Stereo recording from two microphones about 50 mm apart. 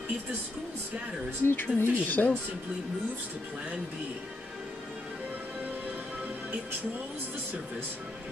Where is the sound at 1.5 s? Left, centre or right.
Left.